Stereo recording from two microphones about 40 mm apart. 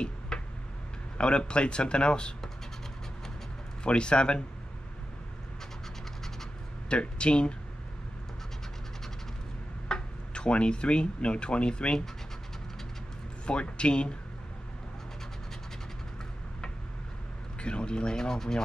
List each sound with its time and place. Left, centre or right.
0.3 s tick-tock: centre
1.1 s speech: left
3.8 s speech: left
6.9 s speech: left
9.8 s speech: left
13.5 s speech: left
17.6 s speech: left